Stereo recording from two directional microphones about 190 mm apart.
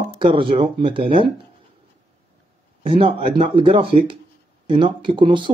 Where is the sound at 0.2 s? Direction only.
25° right (ahead or behind).